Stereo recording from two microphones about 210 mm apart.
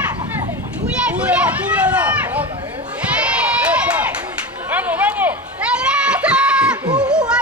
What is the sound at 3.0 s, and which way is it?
Crowd, 5° right (ahead or behind).